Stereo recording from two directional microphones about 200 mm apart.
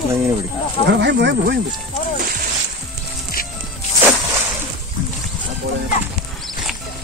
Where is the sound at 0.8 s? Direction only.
60° right (ahead or behind).